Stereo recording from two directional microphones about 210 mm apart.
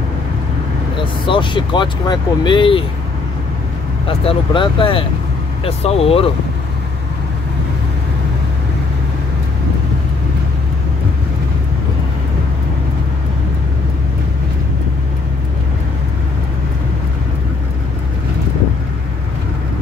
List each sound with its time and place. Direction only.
0.9 s speech: 25° left (ahead or behind)
4.1 s speech: 25° left (ahead or behind)